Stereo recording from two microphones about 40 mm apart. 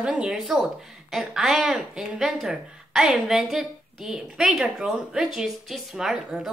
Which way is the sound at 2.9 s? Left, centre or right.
Centre.